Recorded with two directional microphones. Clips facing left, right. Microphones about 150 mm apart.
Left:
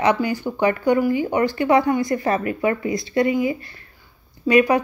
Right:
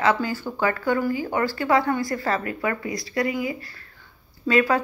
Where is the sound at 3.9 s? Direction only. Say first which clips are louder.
Left 1 dB; 15° left (ahead or behind).